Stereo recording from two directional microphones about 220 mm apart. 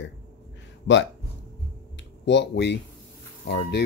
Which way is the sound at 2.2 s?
55° left (ahead or behind).